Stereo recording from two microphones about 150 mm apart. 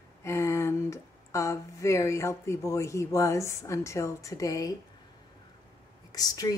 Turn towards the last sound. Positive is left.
turn(degrees=25)  # may be behind; listen again after turning